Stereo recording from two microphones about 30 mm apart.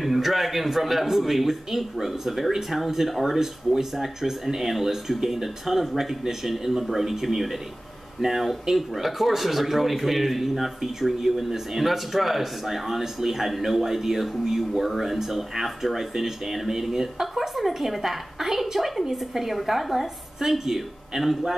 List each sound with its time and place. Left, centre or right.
0.0 s speech: centre
7.1 s speech: centre
20.3 s speech: centre